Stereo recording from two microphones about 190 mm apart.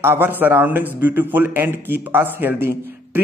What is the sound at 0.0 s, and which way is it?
A man's voice, 10° right (ahead or behind).